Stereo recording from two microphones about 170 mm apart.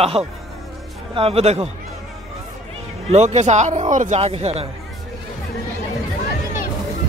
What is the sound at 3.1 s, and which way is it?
A man's voice, 40° right (ahead or behind).